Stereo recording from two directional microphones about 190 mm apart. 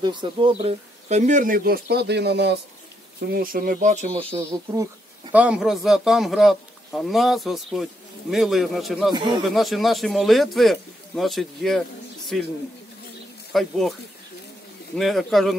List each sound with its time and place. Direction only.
0.0 s speech: 25° right (ahead or behind); by 2.5 s 60° right (ahead or behind)
3.3 s speech: 50° right (ahead or behind); by 4.4 s 30° right (ahead or behind)
5.3 s a man's voice: 5° right (ahead or behind)
9.1 s speech: 25° right (ahead or behind)
9.5 s a man's voice: centre (ahead or behind)
15.0 s a man's voice: centre (ahead or behind)